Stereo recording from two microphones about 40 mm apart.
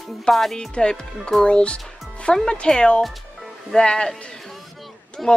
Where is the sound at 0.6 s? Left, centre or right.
Centre.